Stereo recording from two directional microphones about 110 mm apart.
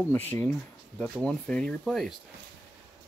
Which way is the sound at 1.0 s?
10° left (ahead or behind).